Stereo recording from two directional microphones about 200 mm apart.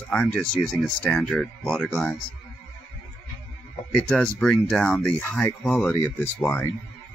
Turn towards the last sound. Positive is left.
turn(degrees=10)  # may be behind; listen again after turning